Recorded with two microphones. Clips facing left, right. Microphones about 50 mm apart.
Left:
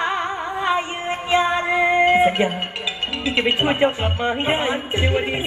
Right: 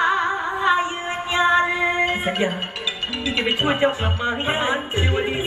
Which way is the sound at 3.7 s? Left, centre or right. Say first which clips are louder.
Left 1 dB; left.